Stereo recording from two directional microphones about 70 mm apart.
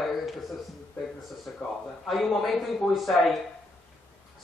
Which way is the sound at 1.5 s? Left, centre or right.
Centre.